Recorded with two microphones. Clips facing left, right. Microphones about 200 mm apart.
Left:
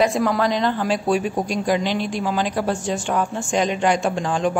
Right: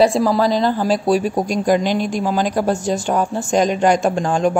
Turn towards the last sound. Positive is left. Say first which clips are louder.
# right 4 dB
turn(degrees=-45)  # may be behind; listen again after turning